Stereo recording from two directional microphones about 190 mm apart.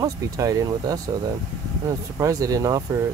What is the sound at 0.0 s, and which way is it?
Speech, 15° right (ahead or behind).